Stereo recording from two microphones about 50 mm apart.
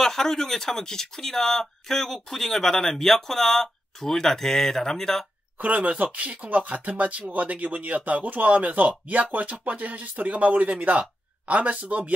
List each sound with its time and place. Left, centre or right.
0.0 s speech: centre
5.6 s speech: right